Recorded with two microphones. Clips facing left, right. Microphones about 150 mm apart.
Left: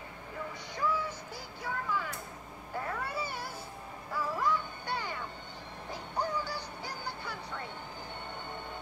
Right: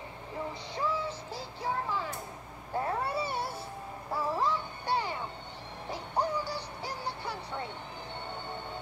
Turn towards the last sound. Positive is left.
turn(degrees=-25)  # may be behind; listen again after turning